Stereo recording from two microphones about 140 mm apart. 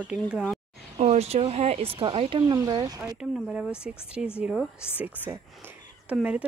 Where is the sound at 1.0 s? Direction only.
45° right (ahead or behind).